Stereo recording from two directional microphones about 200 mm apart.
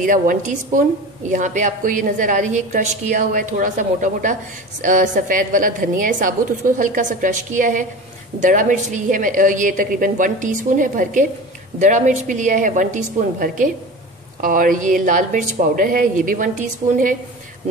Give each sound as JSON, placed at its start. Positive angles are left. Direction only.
{"t": 0.0, "sound": "a woman's voice", "side_deg": -40}